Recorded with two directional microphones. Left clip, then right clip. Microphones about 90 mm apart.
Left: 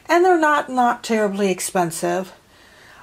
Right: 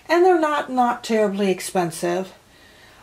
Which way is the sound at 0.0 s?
50° left (ahead or behind).